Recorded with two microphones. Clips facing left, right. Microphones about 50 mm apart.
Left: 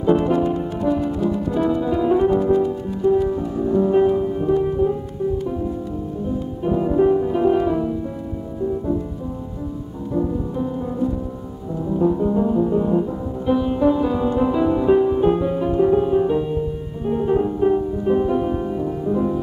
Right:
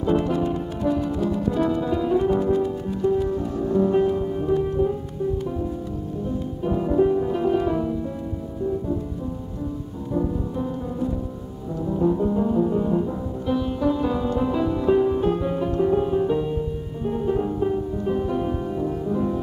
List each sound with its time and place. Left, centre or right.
0.2 s music: centre
2.0 s music: centre
6.2 s music: centre
11.8 s music: centre
15.4 s music: centre